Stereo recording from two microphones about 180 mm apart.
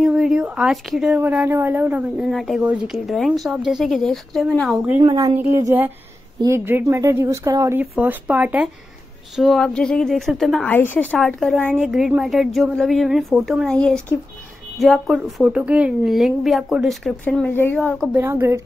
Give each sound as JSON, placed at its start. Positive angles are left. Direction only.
{"t": 0.0, "sound": "a woman's voice", "side_deg": -5}
{"t": 5.0, "sound": "speech", "side_deg": -20}
{"t": 9.4, "sound": "a woman's voice", "side_deg": 0}
{"t": 18.1, "sound": "speech", "side_deg": -15}